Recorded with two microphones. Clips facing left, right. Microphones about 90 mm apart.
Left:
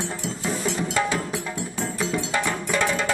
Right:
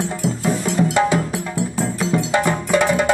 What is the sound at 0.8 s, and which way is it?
Music, 35° right (ahead or behind).